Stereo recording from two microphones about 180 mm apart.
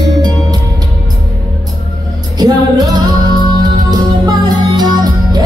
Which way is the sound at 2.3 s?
20° right (ahead or behind).